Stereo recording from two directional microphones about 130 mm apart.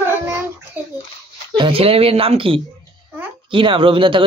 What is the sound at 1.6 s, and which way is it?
Speech, 45° right (ahead or behind).